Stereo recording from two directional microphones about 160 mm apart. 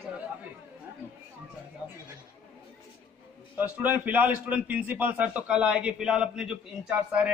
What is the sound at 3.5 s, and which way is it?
A man's voice, 10° right (ahead or behind).